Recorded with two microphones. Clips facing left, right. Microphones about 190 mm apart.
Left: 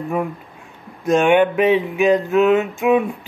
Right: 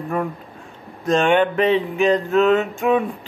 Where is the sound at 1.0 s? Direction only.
10° left (ahead or behind).